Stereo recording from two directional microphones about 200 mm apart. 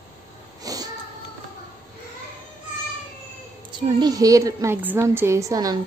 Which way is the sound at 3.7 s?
20° right (ahead or behind).